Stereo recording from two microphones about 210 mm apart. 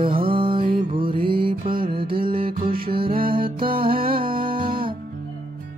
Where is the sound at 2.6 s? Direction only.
45° right (ahead or behind).